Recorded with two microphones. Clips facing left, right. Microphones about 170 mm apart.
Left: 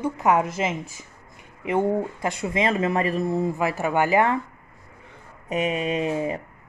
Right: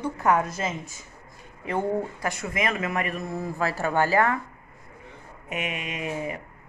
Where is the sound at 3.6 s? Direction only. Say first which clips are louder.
Left 2 dB; 15° left (ahead or behind).